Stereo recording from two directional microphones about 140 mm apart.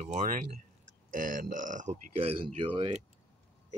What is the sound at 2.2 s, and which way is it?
Speech, 40° right (ahead or behind).